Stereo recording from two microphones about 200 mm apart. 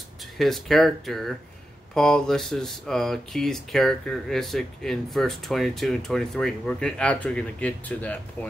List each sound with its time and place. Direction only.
0.4 s speech: centre (ahead or behind)